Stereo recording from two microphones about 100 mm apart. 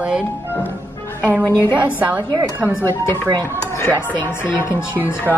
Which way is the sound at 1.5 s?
20° left (ahead or behind).